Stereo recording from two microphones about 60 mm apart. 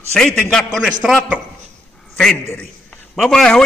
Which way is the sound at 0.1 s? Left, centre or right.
Centre.